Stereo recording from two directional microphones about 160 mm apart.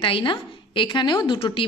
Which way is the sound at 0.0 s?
30° left (ahead or behind).